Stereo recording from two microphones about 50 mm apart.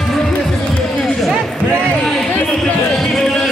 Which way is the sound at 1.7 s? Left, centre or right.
Left.